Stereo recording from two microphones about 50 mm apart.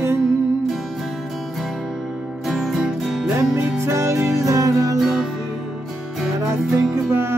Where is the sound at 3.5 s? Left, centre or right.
Right.